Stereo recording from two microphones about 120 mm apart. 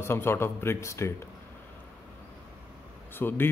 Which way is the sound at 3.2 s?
15° left (ahead or behind).